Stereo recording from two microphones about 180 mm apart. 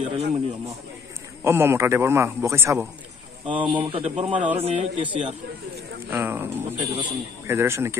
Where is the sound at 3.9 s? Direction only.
35° right (ahead or behind).